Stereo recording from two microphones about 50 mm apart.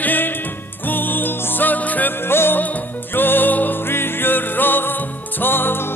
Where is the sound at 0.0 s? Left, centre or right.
Left.